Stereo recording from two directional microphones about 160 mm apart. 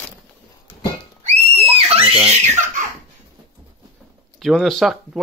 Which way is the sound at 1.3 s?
40° right (ahead or behind).